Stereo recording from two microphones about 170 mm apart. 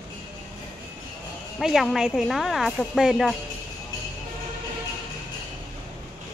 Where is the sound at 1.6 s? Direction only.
Centre (ahead or behind).